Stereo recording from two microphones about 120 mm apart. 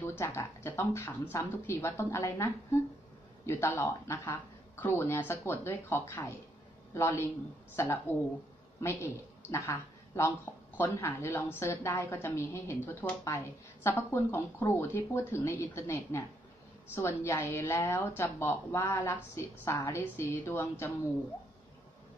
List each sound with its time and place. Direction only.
0.0 s a woman's voice: 20° left (ahead or behind)